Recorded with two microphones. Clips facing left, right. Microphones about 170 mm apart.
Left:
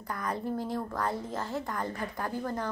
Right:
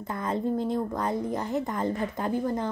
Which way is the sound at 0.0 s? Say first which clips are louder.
Right 5 dB; 25° right (ahead or behind).